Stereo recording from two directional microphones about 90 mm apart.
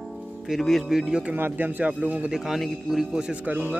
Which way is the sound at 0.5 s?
Centre (ahead or behind).